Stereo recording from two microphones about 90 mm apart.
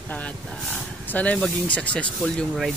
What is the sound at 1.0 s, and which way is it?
Speech, 15° left (ahead or behind).